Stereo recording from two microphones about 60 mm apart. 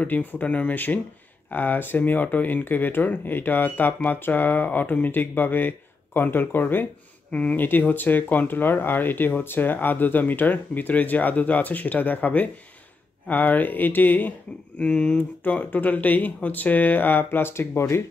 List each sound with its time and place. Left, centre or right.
0.0 s speech: left
7.3 s speech: left
7.9 s speech: left
14.8 s speech: centre; by 18.0 s left